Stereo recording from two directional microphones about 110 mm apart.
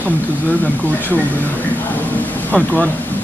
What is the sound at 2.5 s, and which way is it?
Speech, 15° left (ahead or behind).